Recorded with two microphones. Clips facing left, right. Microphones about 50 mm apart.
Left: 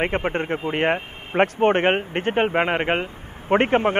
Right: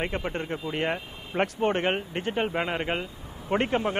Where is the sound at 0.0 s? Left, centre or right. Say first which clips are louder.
Left 7 dB; left.